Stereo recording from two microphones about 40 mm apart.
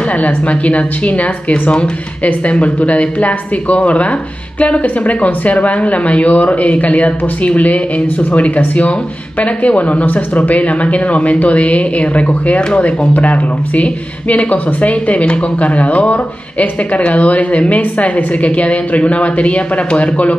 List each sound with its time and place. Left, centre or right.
0.2 s speech: left